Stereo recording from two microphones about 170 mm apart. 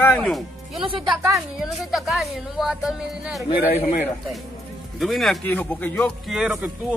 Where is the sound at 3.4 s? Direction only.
40° left (ahead or behind).